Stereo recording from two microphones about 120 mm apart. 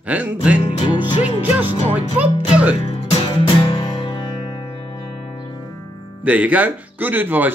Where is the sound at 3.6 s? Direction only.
50° left (ahead or behind).